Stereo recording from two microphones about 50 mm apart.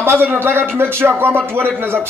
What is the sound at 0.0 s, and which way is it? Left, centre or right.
A man's voice, right.